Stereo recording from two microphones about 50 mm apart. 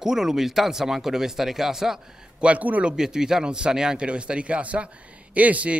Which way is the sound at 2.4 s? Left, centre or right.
Right.